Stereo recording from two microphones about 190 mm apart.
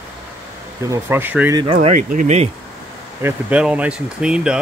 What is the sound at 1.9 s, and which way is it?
Speech, 45° right (ahead or behind).